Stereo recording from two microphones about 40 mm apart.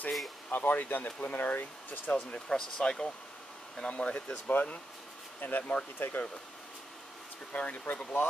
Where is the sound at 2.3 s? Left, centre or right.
Centre.